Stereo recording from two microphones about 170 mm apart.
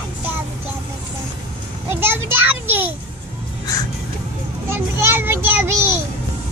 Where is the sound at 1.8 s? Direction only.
15° right (ahead or behind).